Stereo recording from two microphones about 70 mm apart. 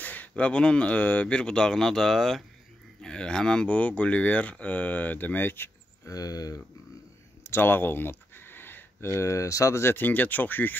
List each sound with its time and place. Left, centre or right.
0.0 s speech: left
6.0 s speech: left
7.4 s speech: left
9.9 s speech: left